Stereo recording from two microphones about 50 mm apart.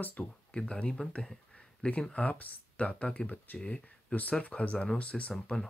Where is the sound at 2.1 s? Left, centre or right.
Left.